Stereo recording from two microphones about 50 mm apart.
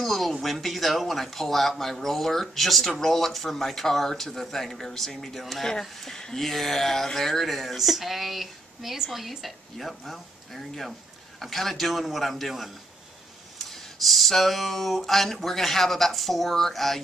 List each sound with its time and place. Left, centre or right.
0.0 s speech: centre